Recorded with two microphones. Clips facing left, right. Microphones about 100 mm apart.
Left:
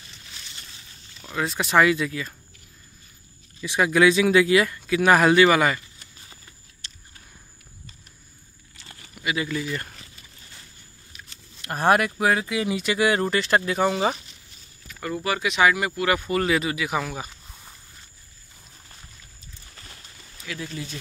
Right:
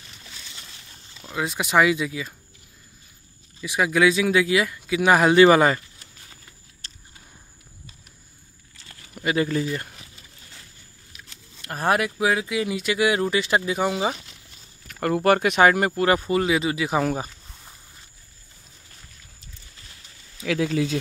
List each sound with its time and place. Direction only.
1.2 s speech: 10° right (ahead or behind)
3.6 s speech: 5° right (ahead or behind)
5.3 s speech: 30° right (ahead or behind)
6.8 s a sound: 40° right (ahead or behind)
9.1 s speech: 40° right (ahead or behind)
11.1 s speech: centre (ahead or behind)
14.9 s speech: 60° right (ahead or behind); by 16.3 s 35° right (ahead or behind)
16.3 s speech: 15° right (ahead or behind)
16.7 s speech: 30° right (ahead or behind)
20.4 s speech: 90° right